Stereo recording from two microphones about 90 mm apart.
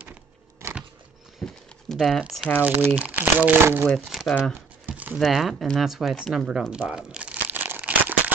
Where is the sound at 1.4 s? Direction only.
10° left (ahead or behind).